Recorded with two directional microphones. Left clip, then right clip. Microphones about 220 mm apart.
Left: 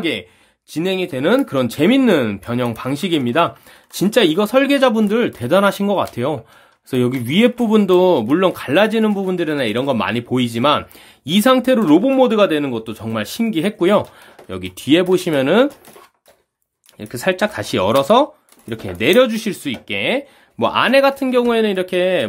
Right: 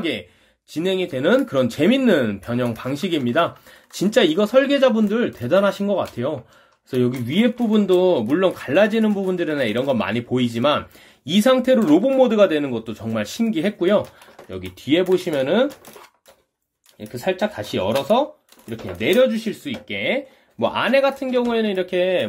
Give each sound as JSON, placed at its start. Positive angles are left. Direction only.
{"t": 0.7, "sound": "speech", "side_deg": 20}
{"t": 17.0, "sound": "speech", "side_deg": 30}